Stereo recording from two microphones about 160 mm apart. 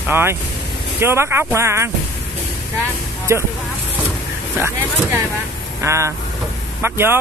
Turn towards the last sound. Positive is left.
turn(degrees=-15)  # may be behind; listen again after turning